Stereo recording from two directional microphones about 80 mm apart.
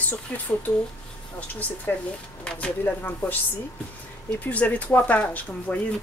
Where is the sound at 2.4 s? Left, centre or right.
Centre.